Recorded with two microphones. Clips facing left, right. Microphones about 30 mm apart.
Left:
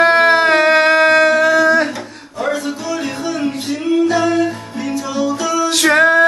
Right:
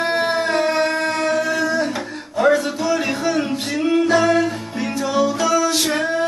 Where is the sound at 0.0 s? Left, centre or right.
Left.